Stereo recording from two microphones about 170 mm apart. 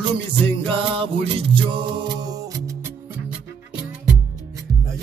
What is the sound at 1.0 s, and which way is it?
Music, 30° right (ahead or behind).